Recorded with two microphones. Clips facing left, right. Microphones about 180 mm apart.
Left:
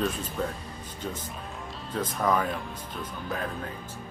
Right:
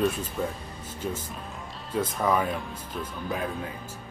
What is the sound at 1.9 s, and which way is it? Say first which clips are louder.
Speech: right 1 dB; 5° right (ahead or behind).